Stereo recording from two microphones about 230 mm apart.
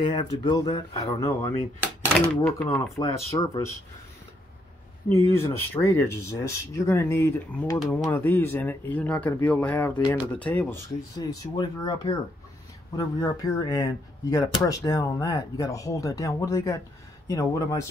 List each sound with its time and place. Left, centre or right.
0.0 s speech: left
5.3 s speech: centre